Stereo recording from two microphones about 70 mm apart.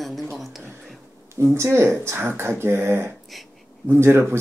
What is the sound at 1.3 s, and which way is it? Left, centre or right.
Speech, right.